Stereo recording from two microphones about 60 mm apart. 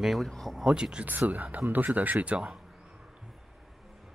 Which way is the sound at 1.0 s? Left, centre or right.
Right.